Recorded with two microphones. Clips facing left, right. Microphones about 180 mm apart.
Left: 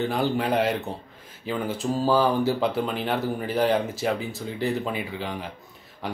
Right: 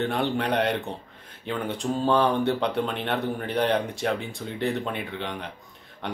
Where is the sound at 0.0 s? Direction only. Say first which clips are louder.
Left 1 dB; centre (ahead or behind).